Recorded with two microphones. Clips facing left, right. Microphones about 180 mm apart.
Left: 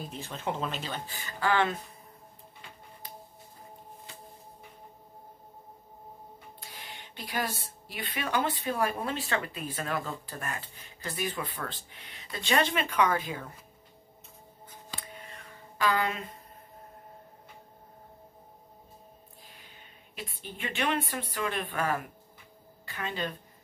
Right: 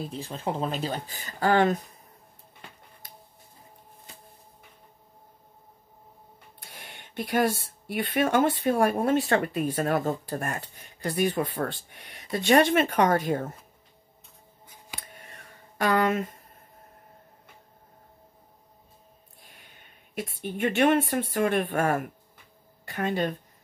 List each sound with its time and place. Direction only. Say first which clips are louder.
0.1 s speech: right 3 dB; 35° right (ahead or behind)
6.6 s speech: right 1 dB; 50° right (ahead or behind)
15.0 s a sound: left 2 dB; 45° right (ahead or behind)
20.2 s speech: right 10 dB; 45° right (ahead or behind)